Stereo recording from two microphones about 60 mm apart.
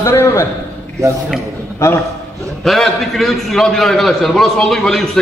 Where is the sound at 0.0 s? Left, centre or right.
Left.